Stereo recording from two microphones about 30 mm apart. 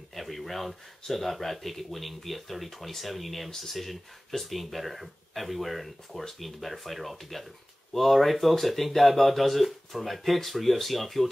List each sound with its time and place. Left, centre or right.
0.1 s speech: centre